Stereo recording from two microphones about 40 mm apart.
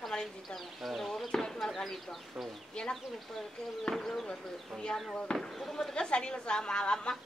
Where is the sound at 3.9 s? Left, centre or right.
Centre.